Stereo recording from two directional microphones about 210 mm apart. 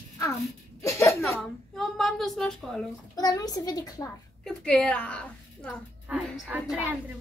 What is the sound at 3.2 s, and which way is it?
Speech, 15° left (ahead or behind).